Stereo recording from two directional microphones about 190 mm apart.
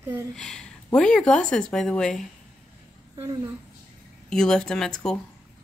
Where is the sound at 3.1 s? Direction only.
20° right (ahead or behind).